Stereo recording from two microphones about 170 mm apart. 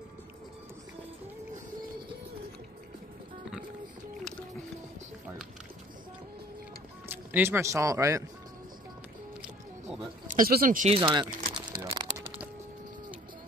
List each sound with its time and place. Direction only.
7.1 s speech: 15° right (ahead or behind)
10.3 s speech: 60° right (ahead or behind)
10.9 s a sound: 30° right (ahead or behind)